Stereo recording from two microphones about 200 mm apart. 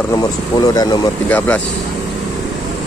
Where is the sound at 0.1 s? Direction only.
20° left (ahead or behind).